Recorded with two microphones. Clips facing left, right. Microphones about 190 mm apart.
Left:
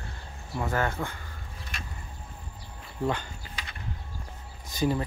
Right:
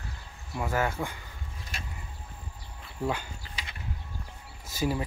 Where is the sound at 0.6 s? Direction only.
10° right (ahead or behind).